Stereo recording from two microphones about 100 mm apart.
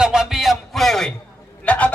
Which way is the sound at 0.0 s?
5° right (ahead or behind).